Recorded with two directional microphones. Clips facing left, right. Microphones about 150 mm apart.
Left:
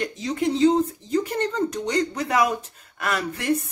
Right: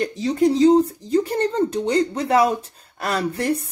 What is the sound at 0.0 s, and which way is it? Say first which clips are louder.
Speech: right 6 dB; 35° right (ahead or behind).